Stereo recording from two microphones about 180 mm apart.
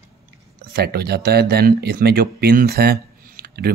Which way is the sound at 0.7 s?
65° right (ahead or behind).